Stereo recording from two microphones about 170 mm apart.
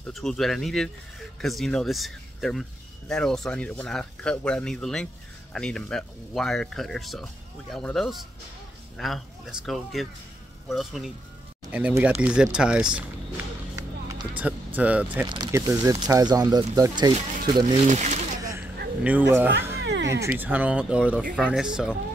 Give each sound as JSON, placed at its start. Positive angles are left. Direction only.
{"t": 0.1, "sound": "speech", "side_deg": 0}
{"t": 14.3, "sound": "speech", "side_deg": -10}
{"t": 15.2, "sound": "speech", "side_deg": -25}
{"t": 17.6, "sound": "speech", "side_deg": -45}
{"t": 18.4, "sound": "a sound", "side_deg": -15}
{"t": 19.0, "sound": "speech", "side_deg": -10}
{"t": 19.8, "sound": "music", "side_deg": -90}
{"t": 20.2, "sound": "speech", "side_deg": -10}